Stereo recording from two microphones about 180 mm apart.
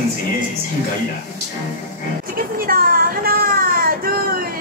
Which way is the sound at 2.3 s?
55° right (ahead or behind).